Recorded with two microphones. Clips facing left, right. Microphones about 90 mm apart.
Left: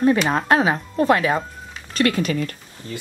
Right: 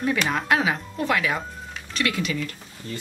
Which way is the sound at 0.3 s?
35° left (ahead or behind).